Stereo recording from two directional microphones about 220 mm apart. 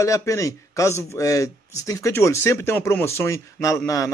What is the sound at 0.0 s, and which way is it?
Speech, 15° left (ahead or behind).